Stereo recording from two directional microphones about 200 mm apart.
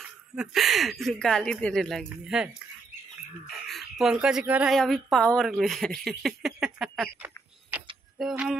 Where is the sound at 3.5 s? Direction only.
Centre (ahead or behind).